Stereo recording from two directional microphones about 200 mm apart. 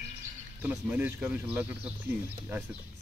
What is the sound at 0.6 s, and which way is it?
Speech, 5° right (ahead or behind).